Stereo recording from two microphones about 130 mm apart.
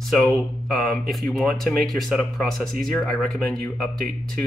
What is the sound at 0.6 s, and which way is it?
Speech, centre (ahead or behind).